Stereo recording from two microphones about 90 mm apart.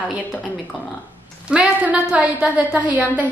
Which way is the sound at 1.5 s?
15° right (ahead or behind).